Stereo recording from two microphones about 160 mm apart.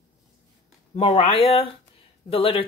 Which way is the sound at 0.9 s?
35° left (ahead or behind).